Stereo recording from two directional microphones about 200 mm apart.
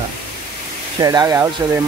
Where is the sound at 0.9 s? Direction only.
20° right (ahead or behind).